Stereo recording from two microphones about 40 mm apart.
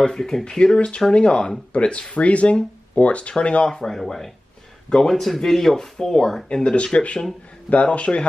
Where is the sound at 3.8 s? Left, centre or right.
Centre.